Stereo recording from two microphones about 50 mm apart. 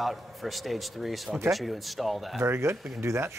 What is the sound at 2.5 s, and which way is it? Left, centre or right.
Speech, right.